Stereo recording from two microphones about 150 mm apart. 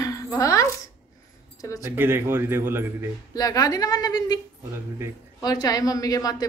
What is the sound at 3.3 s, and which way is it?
A woman's voice, 25° left (ahead or behind).